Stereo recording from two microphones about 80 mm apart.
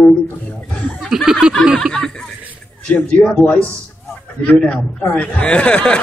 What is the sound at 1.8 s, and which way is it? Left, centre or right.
Speech, centre.